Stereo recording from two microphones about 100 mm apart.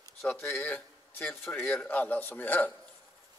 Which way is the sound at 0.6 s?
15° left (ahead or behind).